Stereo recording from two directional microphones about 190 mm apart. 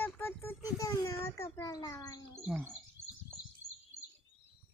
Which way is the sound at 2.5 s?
10° right (ahead or behind).